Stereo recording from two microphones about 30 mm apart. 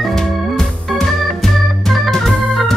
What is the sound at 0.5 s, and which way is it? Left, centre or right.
Music, centre.